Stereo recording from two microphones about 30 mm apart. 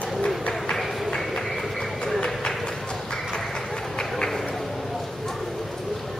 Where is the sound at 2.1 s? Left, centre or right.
Left.